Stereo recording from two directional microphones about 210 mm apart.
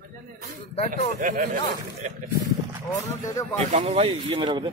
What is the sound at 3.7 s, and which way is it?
Speech, 30° right (ahead or behind).